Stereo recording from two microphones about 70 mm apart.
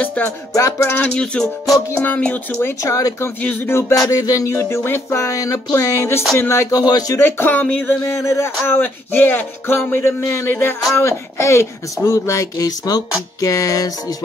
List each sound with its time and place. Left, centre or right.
0.0 s music: left
0.6 s speech: left
1.0 s music: centre
2.0 s speech: left
2.8 s speech: left
3.3 s speech: left
4.1 s music: left
5.3 s speech: left
6.3 s music: left
6.9 s speech: left
7.2 s speech: left
7.8 s music: left
8.6 s music: left
11.0 s speech: left